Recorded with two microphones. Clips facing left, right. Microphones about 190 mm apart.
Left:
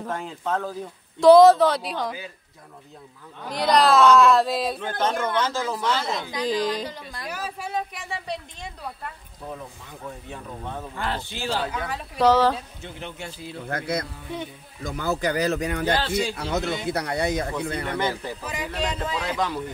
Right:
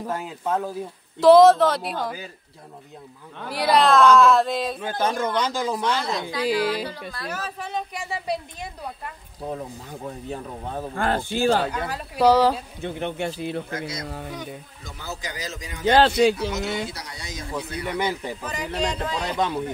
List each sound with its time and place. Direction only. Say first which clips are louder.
0.0 s speech: right 1 dB; 5° right (ahead or behind)
3.4 s speech: even; 5° right (ahead or behind)
4.7 s speech: right 1 dB; 10° right (ahead or behind)
6.9 s a woman's voice: right 2 dB; 20° left (ahead or behind); by 8.6 s 5° right (ahead or behind)
9.5 s speech: right 5 dB; 35° right (ahead or behind)
11.7 s speech: right 1 dB; centre (ahead or behind)
12.8 s speech: right 9 dB; 60° right (ahead or behind)
13.7 s a man's voice: left 3 dB; 60° left (ahead or behind)
15.9 s speech: right 11 dB; 65° right (ahead or behind)
16.3 s a man's voice: even; 60° left (ahead or behind)
17.8 s speech: right 1 dB; 10° right (ahead or behind)
18.4 s speech: right 2 dB; 5° left (ahead or behind)
19.3 s speech: right 4 dB; 25° right (ahead or behind)